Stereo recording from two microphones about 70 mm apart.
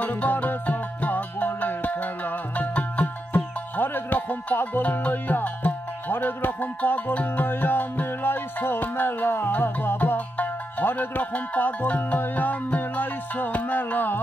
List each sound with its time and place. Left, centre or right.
0.0 s music: left